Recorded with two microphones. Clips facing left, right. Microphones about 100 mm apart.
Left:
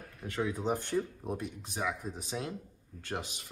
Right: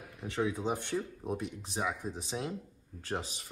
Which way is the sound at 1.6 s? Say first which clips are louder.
Even; 30° right (ahead or behind).